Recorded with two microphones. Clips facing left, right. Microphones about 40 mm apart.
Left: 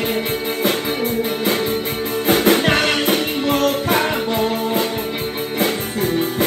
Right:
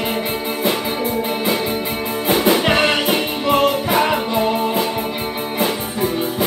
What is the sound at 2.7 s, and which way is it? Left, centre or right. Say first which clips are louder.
Music: right 1 dB; right.